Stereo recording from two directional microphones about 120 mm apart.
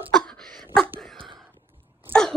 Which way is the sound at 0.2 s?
5° left (ahead or behind).